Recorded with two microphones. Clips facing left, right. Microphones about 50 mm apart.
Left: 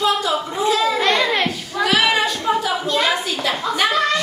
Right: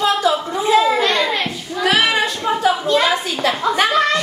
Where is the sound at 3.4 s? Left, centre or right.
Right.